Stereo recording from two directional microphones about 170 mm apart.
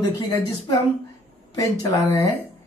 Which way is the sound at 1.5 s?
20° left (ahead or behind).